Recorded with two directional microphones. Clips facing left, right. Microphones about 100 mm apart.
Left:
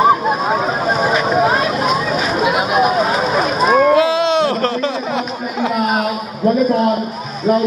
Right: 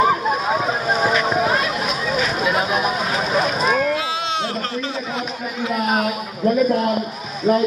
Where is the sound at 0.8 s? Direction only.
25° left (ahead or behind).